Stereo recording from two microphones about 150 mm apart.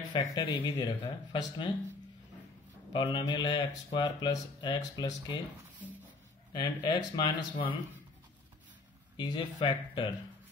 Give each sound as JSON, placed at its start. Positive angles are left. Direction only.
{"t": 0.1, "sound": "speech", "side_deg": 30}
{"t": 2.9, "sound": "speech", "side_deg": 30}
{"t": 6.5, "sound": "speech", "side_deg": 30}
{"t": 9.1, "sound": "speech", "side_deg": 30}